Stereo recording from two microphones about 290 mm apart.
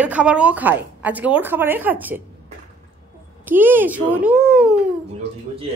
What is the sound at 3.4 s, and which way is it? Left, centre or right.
A woman's voice, centre.